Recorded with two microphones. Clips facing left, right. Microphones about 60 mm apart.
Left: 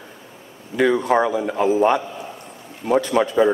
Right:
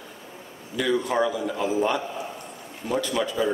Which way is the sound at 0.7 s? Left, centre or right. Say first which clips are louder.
Left 6 dB; left.